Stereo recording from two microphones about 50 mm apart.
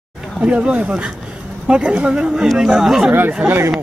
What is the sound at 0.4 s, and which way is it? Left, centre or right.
A woman's voice, right.